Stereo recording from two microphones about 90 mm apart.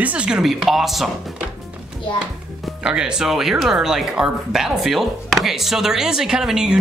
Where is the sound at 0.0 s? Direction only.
15° right (ahead or behind).